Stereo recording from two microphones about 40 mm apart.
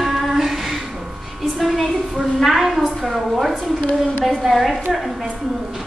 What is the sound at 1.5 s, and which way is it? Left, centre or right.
A woman's voice, centre.